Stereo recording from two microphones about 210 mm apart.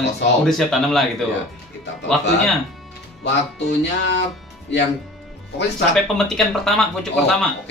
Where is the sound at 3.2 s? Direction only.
55° left (ahead or behind).